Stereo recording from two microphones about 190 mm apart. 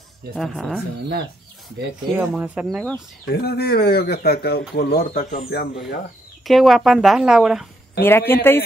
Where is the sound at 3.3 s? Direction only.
55° left (ahead or behind).